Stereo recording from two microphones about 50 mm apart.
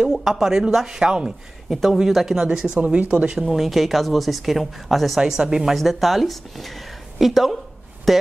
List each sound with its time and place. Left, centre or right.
0.1 s speech: centre
3.4 s speech: centre
5.2 s speech: centre
5.8 s speech: centre